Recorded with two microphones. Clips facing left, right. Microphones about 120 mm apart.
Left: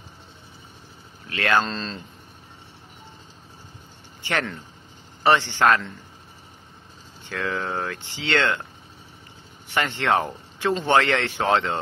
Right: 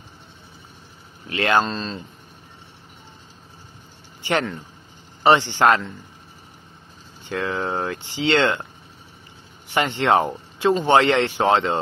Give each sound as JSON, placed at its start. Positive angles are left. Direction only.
{"t": 1.2, "sound": "speech", "side_deg": -20}
{"t": 5.2, "sound": "speech", "side_deg": -15}
{"t": 7.2, "sound": "speech", "side_deg": -15}
{"t": 9.8, "sound": "speech", "side_deg": -15}